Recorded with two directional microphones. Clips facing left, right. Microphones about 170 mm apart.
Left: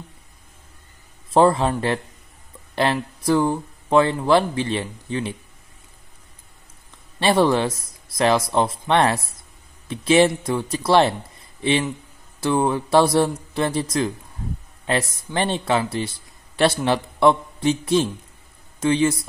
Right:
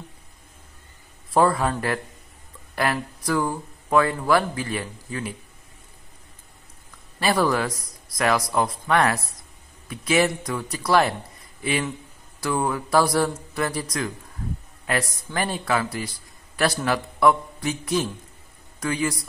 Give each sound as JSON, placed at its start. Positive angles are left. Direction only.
{"t": 1.3, "sound": "a man's voice", "side_deg": 25}
{"t": 7.2, "sound": "a man's voice", "side_deg": 25}